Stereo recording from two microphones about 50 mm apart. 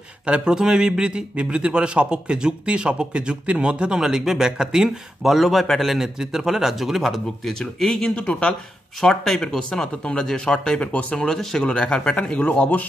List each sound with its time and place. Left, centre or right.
0.3 s a man's voice: centre
5.9 s speech: centre
8.2 s speech: left
9.2 s speech: centre; by 11.2 s left
11.2 s speech: centre
11.6 s speech: centre